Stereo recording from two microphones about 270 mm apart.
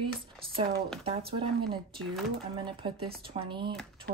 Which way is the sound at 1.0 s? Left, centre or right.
Centre.